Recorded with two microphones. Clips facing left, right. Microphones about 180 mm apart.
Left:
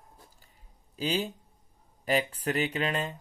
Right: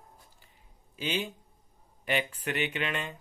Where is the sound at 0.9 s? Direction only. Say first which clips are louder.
Left 3 dB; 35° left (ahead or behind).